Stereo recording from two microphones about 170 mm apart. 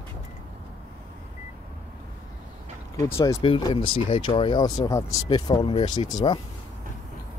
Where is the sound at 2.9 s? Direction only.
15° left (ahead or behind).